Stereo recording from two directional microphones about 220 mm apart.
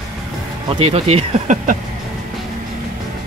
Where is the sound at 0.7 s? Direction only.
25° right (ahead or behind).